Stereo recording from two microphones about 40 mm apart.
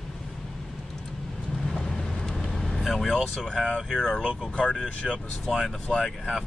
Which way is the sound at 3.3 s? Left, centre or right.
Centre.